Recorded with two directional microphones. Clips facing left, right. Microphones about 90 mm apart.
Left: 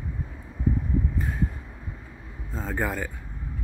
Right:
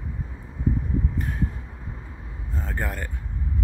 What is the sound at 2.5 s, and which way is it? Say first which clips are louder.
Vehicle: left 3 dB; 15° left (ahead or behind).